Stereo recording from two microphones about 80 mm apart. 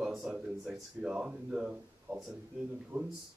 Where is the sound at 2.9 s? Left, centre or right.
Right.